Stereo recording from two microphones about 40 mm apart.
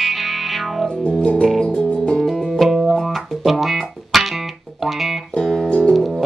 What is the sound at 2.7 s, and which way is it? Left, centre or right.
Music, centre.